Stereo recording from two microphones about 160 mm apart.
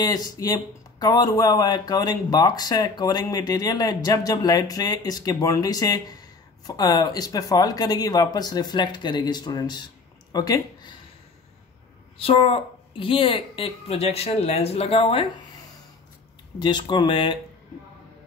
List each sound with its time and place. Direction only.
0.0 s speech: 25° left (ahead or behind)
12.2 s a woman's voice: 35° left (ahead or behind)
16.5 s speech: 25° left (ahead or behind)